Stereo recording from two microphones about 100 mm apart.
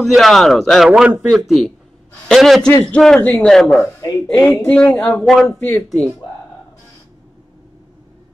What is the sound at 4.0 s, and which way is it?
Speech, 35° left (ahead or behind).